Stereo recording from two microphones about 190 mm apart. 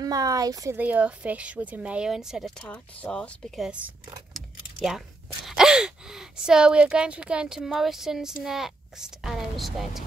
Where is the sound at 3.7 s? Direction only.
5° right (ahead or behind).